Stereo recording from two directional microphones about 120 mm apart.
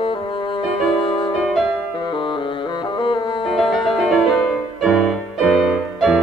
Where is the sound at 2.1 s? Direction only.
45° left (ahead or behind).